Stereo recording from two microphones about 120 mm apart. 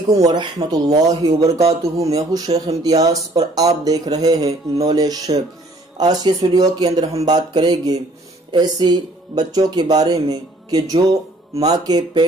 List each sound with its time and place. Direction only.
0.1 s speech: 30° right (ahead or behind)